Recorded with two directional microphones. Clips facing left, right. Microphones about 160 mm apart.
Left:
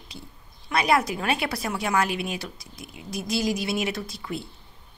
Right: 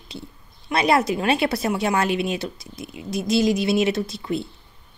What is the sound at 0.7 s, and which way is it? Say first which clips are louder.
Speech: right 3 dB; 30° right (ahead or behind).